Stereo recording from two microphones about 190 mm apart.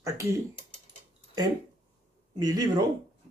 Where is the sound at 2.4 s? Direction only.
20° right (ahead or behind).